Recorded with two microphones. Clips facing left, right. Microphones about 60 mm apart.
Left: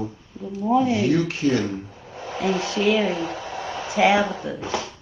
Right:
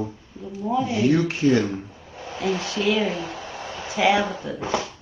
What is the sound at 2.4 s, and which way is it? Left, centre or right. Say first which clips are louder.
Speech: left 2 dB; left.